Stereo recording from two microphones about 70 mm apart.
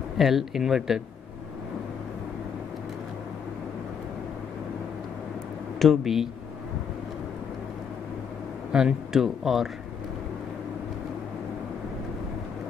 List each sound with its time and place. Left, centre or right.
0.2 s speech: centre
5.8 s speech: centre
8.7 s speech: centre